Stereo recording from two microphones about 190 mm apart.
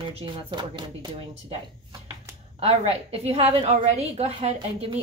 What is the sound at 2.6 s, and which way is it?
A woman's voice, 30° right (ahead or behind).